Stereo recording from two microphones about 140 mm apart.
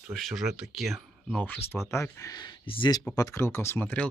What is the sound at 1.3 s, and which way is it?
Speech, 10° left (ahead or behind).